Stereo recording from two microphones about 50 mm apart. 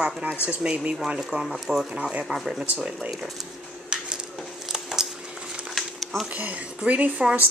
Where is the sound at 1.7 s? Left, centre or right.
Right.